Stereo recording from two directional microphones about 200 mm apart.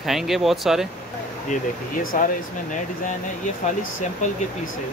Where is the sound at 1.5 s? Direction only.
40° left (ahead or behind).